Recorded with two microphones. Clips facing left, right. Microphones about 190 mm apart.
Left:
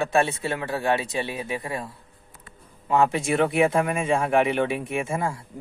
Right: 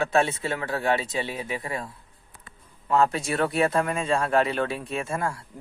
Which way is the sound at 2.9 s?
15° left (ahead or behind).